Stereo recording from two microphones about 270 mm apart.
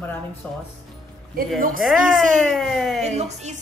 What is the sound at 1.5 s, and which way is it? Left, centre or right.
Speech, right.